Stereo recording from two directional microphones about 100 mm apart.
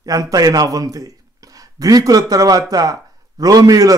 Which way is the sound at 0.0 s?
35° right (ahead or behind).